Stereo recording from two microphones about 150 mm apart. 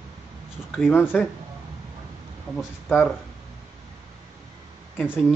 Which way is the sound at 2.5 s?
Centre (ahead or behind).